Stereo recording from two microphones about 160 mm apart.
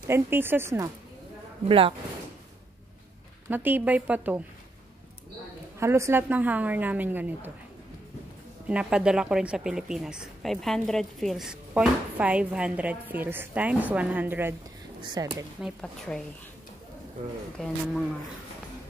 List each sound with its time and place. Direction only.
0.0 s a woman's voice: 15° right (ahead or behind)
1.6 s speech: 35° right (ahead or behind)
3.4 s a woman's voice: 10° right (ahead or behind)
5.8 s a woman's voice: 15° right (ahead or behind)
8.6 s a woman's voice: 5° right (ahead or behind)
15.0 s speech: 25° right (ahead or behind)
15.6 s speech: 5° left (ahead or behind)
17.6 s speech: 5° left (ahead or behind)